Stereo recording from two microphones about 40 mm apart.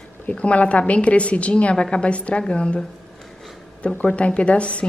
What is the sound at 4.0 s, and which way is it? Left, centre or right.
Speech, left.